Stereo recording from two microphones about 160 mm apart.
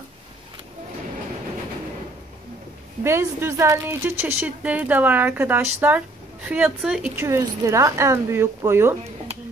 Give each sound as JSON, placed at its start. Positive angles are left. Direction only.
{"t": 3.0, "sound": "a woman's voice", "side_deg": -15}
{"t": 7.2, "sound": "a woman's voice", "side_deg": -20}